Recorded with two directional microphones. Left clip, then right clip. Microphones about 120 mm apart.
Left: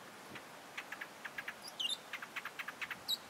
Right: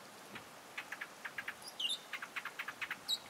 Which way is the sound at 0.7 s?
10° left (ahead or behind).